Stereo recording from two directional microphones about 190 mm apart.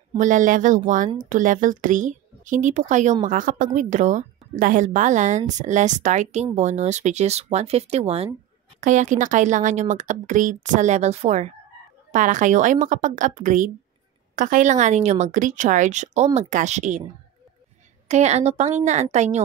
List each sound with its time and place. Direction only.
0.2 s speech: 45° right (ahead or behind)
18.0 s speech: 35° right (ahead or behind)